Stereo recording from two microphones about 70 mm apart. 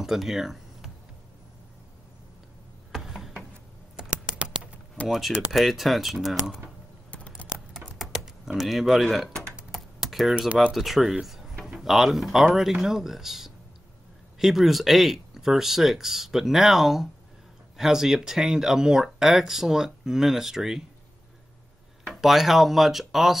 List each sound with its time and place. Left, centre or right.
0.0 s a sound: centre
2.9 s a sound: centre
3.9 s typing: centre
5.0 s speech: centre
7.1 s scissors: centre
8.0 s typing: centre
9.7 s computer keyboard: centre
10.7 s speech: centre
22.1 s speech: centre